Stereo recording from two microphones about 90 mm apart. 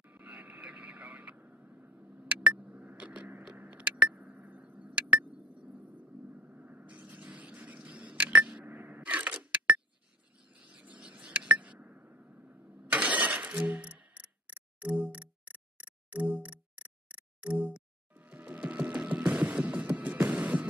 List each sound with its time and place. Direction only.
0.0 s vehicle: 20° right (ahead or behind)
3.0 s a sound: 15° right (ahead or behind)
14.8 s music: 15° right (ahead or behind)